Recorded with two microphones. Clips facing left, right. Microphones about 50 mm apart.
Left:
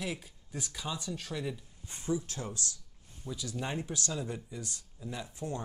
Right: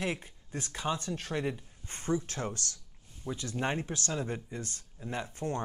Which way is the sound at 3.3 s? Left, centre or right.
Right.